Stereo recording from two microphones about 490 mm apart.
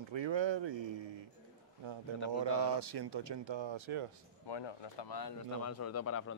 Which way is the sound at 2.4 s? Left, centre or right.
Right.